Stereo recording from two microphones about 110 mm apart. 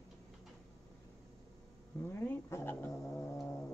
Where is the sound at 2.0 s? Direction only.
20° left (ahead or behind).